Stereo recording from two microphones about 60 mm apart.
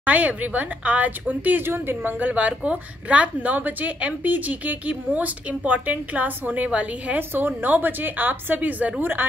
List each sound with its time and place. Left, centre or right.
0.0 s a woman's voice: right
7.2 s a woman's voice: right